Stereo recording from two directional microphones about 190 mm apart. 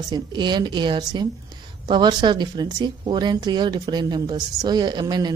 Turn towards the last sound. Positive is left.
turn(degrees=-25)  # may be behind; listen again after turning